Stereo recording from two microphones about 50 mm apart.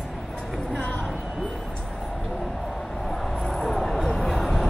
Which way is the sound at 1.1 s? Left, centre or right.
Centre.